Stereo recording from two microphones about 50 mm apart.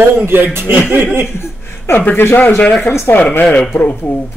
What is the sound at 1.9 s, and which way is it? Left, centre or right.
Speech, left.